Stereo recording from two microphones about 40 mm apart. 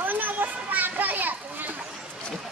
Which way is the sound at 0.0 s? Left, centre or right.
Right.